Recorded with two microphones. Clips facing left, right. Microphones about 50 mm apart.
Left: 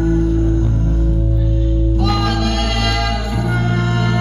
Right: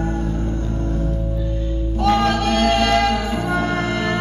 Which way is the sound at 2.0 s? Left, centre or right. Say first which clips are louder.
Right 4 dB; right.